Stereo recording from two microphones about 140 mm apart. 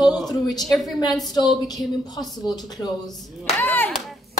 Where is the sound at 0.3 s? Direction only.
30° left (ahead or behind).